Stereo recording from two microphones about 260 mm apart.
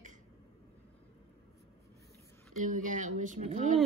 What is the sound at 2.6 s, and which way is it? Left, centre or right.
A woman's voice, right.